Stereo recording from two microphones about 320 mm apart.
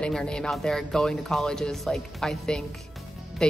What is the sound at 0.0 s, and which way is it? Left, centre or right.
Speech, centre.